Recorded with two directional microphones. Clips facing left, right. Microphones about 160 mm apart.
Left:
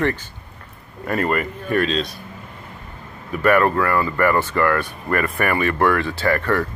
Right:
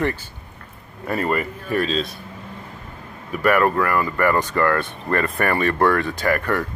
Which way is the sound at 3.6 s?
15° right (ahead or behind).